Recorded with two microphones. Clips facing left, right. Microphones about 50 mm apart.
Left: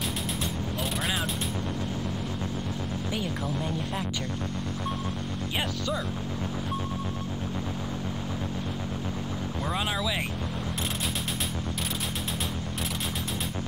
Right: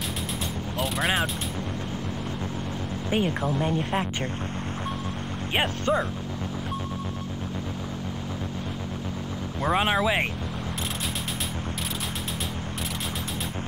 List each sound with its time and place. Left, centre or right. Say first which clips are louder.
3.1 s speech: right 9 dB; right
5.6 s speech: right 7 dB; right
9.6 s speech: right 8 dB; right